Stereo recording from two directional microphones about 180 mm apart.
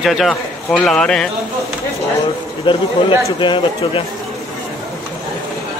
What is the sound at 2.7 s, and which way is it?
A man's voice, 30° left (ahead or behind).